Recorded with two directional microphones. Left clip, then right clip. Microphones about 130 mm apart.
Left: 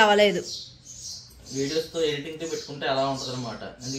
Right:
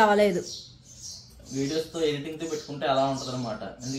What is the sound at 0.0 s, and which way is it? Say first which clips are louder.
Speech: left 2 dB; 10° right (ahead or behind).